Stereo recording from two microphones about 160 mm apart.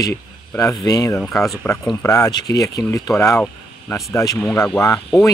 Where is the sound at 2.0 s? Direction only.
20° left (ahead or behind).